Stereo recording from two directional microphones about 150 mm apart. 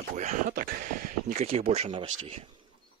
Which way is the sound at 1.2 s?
50° right (ahead or behind).